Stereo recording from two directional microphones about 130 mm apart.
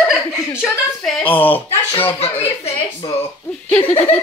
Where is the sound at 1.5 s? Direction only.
15° left (ahead or behind).